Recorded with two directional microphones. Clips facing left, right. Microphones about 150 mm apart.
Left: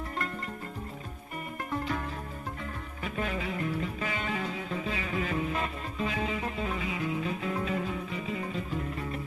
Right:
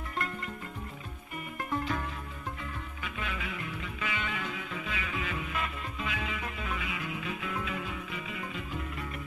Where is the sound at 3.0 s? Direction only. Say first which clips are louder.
Left 7 dB; 40° left (ahead or behind).